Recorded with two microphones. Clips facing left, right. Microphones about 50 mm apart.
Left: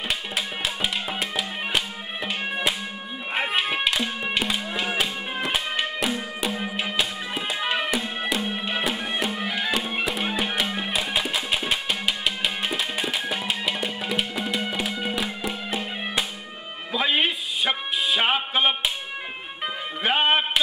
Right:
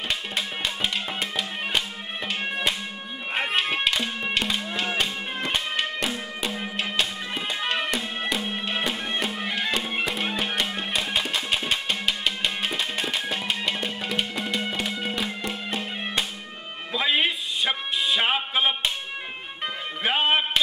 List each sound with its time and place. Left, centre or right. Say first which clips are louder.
0.8 s music: left 1 dB; centre